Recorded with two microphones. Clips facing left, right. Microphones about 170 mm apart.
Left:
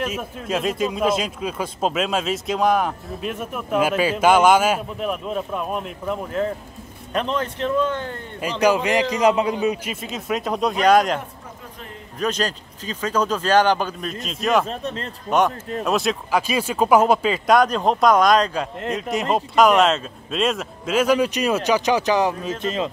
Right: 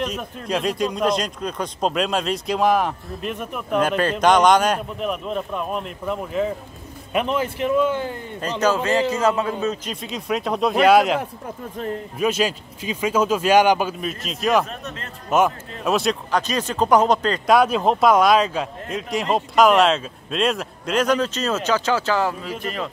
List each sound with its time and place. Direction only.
0.0 s a man's voice: 5° left (ahead or behind)
8.4 s speech: 10° left (ahead or behind)
10.0 s speech: centre (ahead or behind)
12.2 s a man's voice: 10° right (ahead or behind)
14.7 s a man's voice: 30° left (ahead or behind)
15.2 s speech: 5° right (ahead or behind)
17.6 s speech: 5° right (ahead or behind); by 22.8 s 20° left (ahead or behind)